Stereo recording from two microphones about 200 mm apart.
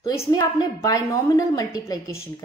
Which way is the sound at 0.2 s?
20° left (ahead or behind).